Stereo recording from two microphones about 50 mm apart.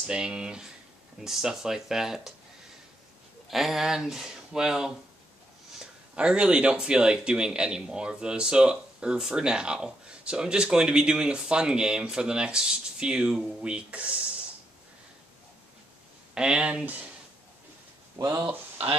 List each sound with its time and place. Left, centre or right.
0.0 s speech: centre
3.4 s speech: centre
6.1 s speech: right
16.3 s speech: centre
16.8 s speech: right
18.2 s speech: right